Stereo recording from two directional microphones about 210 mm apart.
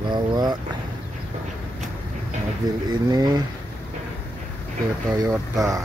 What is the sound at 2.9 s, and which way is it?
Speech, 20° right (ahead or behind).